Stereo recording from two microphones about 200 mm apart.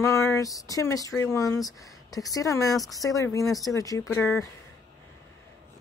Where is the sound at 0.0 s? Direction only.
15° left (ahead or behind).